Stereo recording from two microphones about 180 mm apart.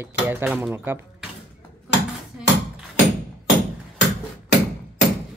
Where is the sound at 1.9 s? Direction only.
75° left (ahead or behind).